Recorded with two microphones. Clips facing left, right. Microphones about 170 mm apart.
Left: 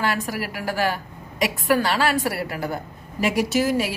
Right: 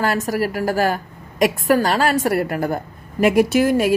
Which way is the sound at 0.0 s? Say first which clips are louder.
Right 6 dB; 40° right (ahead or behind).